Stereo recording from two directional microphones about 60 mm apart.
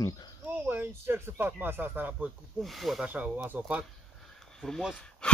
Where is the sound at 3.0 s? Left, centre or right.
Right.